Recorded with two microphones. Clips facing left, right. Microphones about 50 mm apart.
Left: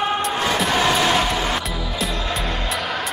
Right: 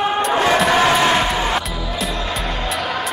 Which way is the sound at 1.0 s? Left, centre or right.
Right.